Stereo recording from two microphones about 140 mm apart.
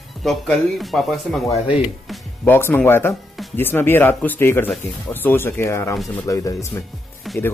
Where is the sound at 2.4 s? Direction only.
15° left (ahead or behind).